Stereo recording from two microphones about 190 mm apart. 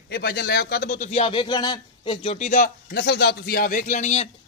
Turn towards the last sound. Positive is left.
turn(degrees=35)  # may be behind; listen again after turning